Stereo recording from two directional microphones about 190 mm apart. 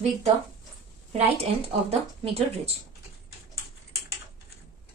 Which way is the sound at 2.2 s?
30° right (ahead or behind).